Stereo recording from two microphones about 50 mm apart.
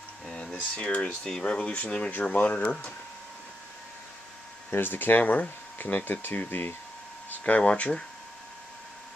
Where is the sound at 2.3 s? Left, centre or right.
Left.